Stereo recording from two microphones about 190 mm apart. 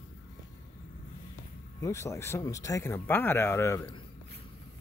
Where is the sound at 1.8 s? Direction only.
15° left (ahead or behind).